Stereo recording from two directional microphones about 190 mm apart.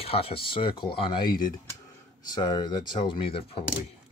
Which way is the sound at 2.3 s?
20° left (ahead or behind).